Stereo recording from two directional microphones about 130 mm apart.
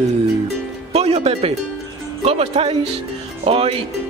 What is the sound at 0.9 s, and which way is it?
Music, 50° right (ahead or behind).